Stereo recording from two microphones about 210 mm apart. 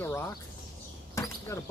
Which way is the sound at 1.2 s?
15° left (ahead or behind).